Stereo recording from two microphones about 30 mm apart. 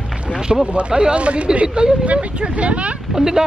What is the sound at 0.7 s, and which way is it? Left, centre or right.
Speech, right.